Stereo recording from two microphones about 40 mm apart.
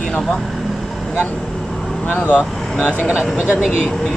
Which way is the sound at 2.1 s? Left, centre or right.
Left.